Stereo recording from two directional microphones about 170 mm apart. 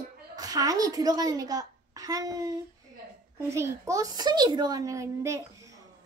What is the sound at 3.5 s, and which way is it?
A child's voice, 15° right (ahead or behind).